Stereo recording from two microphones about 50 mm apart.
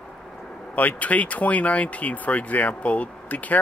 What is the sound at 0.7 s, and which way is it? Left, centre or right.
Speech, left.